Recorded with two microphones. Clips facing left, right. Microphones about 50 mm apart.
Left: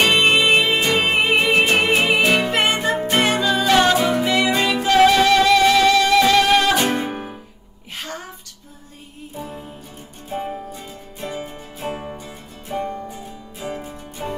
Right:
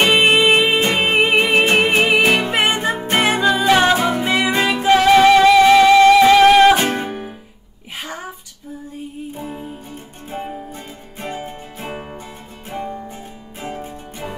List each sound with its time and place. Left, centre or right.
0.0 s music: right
4.1 s music: right; by 6.4 s centre
6.6 s music: right
7.1 s music: centre
8.0 s music: centre
9.4 s music: centre
11.1 s music: right
12.7 s music: centre